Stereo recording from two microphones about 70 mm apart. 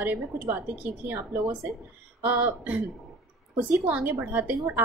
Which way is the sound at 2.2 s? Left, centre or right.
Right.